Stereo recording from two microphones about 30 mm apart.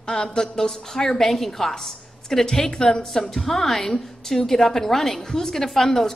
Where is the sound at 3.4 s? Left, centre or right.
Centre.